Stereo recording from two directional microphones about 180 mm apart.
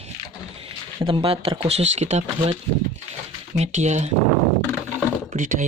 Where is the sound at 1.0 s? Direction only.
30° right (ahead or behind).